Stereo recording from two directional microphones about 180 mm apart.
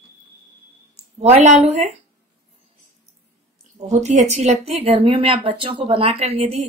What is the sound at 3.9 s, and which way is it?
Speech, 40° right (ahead or behind).